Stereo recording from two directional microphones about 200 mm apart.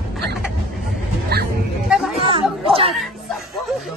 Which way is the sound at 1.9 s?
Centre (ahead or behind).